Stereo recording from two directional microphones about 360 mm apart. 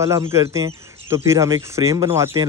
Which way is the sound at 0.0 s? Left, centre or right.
Centre.